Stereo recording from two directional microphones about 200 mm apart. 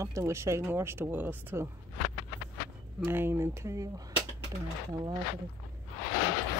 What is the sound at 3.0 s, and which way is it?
Speech, 10° right (ahead or behind).